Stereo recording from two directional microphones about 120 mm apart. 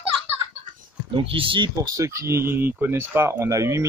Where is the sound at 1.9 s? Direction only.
25° right (ahead or behind).